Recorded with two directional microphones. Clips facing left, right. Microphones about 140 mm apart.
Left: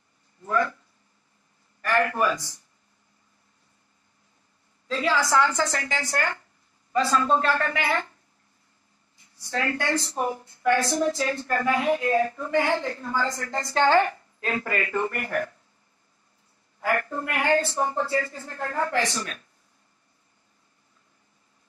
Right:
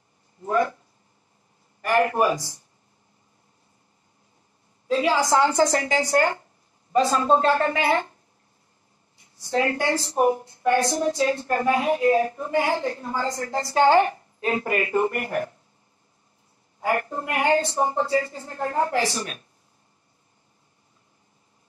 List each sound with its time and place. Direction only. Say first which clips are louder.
0.4 s a man's voice: right 3 dB; 25° right (ahead or behind)
4.8 s a woman's voice: right 4 dB; 20° right (ahead or behind); by 5.9 s 35° right (ahead or behind)
5.9 s a woman's voice: right 7 dB; 15° right (ahead or behind)
9.4 s a woman's voice: right 5 dB; 25° right (ahead or behind)
16.8 s a woman's voice: right 1 dB; 25° right (ahead or behind)